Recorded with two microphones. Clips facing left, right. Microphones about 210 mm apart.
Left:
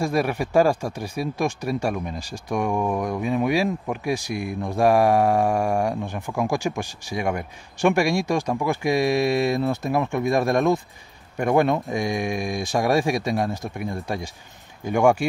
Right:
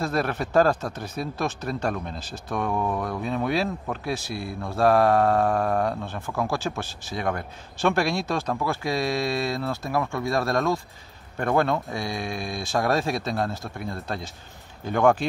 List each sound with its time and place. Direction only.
0.0 s speech: 10° left (ahead or behind)